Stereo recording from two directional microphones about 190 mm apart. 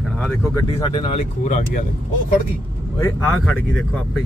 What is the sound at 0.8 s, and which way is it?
Speech, 25° left (ahead or behind).